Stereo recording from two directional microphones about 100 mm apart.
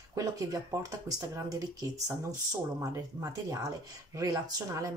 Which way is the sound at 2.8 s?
35° right (ahead or behind).